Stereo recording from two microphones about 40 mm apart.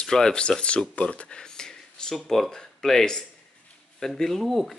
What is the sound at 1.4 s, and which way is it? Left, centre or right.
Speech, centre.